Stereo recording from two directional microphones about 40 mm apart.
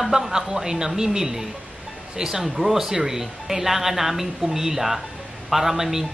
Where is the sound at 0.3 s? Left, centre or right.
Centre.